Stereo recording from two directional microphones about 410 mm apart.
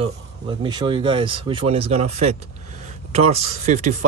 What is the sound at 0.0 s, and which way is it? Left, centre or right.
Speech, centre.